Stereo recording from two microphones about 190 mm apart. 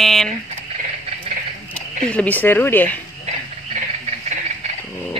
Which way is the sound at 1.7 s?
5° left (ahead or behind).